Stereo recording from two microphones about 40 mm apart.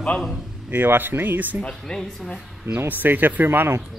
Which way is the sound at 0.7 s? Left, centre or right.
Right.